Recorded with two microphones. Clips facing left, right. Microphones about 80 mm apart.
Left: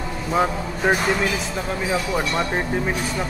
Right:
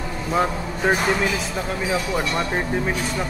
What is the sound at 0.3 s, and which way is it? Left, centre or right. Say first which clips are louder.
Speech: left 1 dB; centre.